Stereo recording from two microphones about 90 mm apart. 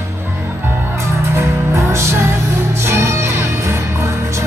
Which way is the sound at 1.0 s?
30° right (ahead or behind).